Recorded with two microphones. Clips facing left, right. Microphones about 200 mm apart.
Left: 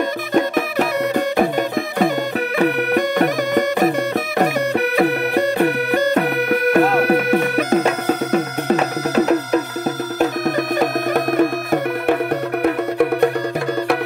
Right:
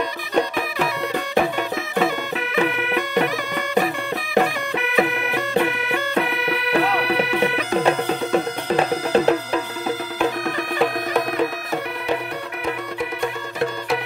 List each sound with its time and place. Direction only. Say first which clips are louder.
0.3 s music: left 3 dB; 45° left (ahead or behind)
8.7 s music: right 1 dB; 30° right (ahead or behind)
10.1 s music: left 6 dB; 45° left (ahead or behind); by 13.3 s 60° left (ahead or behind)